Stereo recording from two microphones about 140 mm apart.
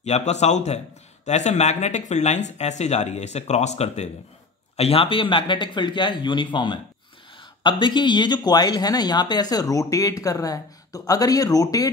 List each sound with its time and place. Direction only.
0.0 s a man's voice: 55° left (ahead or behind); by 11.9 s 25° left (ahead or behind)